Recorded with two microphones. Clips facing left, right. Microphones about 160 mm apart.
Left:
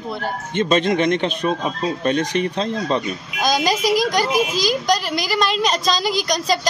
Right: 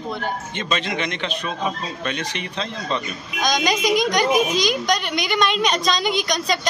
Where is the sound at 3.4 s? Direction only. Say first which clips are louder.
Left 2 dB; 5° left (ahead or behind).